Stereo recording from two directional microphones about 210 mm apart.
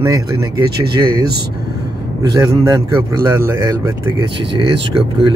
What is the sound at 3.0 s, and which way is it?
Speech, 15° right (ahead or behind).